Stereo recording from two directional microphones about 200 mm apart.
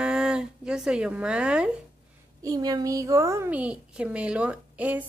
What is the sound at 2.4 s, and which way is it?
A woman's voice, 20° right (ahead or behind).